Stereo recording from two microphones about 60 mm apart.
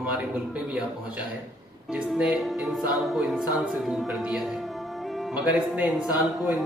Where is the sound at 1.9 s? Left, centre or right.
Centre.